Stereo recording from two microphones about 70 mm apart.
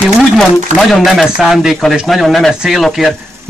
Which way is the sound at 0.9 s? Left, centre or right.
Centre.